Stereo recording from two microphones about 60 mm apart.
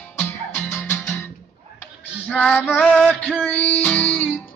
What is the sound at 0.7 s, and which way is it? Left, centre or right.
Music, left.